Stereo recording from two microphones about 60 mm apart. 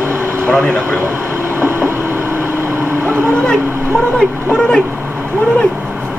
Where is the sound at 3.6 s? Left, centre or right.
Right.